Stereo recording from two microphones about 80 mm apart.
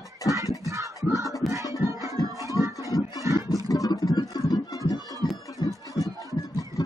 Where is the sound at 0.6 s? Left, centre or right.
Right.